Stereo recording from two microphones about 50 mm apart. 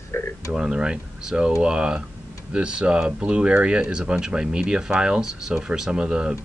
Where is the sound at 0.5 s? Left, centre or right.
Centre.